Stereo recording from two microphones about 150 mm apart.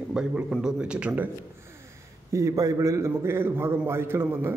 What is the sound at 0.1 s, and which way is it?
A man's voice, 5° right (ahead or behind).